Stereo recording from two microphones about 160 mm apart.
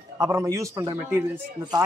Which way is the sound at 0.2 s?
20° right (ahead or behind).